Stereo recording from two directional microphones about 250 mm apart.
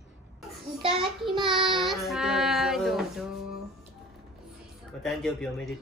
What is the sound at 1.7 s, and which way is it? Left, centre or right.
A woman's voice, centre.